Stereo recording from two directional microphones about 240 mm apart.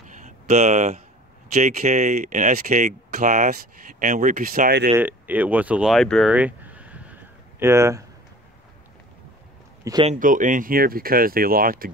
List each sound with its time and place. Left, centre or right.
0.0 s a sound: right
1.5 s speech: right
4.9 s speech: centre
9.8 s speech: centre
10.1 s speech: right